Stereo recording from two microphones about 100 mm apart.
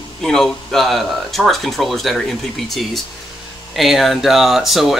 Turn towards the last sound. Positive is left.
turn(degrees=0)  # may be behind; listen again after turning